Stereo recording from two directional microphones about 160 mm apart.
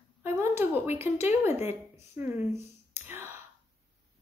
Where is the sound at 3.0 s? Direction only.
15° right (ahead or behind).